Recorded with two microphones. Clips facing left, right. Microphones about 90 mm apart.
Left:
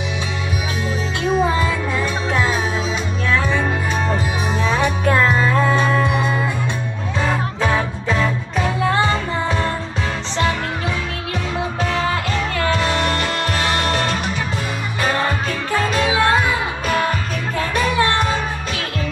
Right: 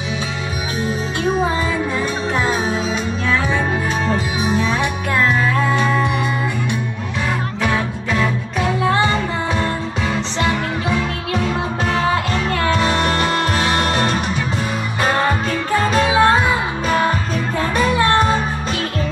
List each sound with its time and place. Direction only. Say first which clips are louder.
4.5 s music: even; 10° right (ahead or behind)
5.0 s music: left 1 dB; 20° left (ahead or behind)
8.1 s music: even; 5° right (ahead or behind)
12.8 s music: right 2 dB; 15° right (ahead or behind)
15.9 s music: right 4 dB; 40° right (ahead or behind)